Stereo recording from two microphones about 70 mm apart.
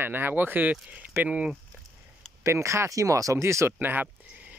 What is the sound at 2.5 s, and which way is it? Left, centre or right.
Speech, right.